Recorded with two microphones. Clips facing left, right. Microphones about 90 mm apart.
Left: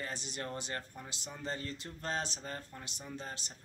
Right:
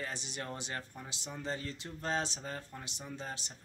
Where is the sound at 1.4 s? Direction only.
5° right (ahead or behind).